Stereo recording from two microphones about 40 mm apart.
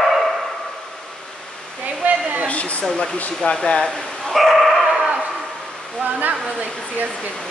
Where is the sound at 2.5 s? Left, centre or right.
Left.